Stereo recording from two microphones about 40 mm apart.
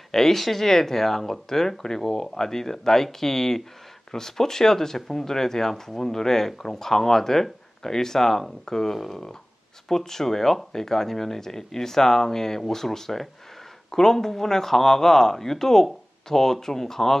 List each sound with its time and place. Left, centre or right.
0.1 s speech: centre